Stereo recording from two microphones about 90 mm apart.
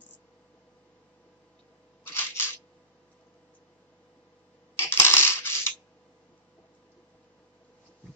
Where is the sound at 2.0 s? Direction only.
25° left (ahead or behind).